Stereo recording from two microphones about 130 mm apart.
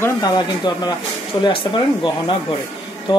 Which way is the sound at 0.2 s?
30° left (ahead or behind).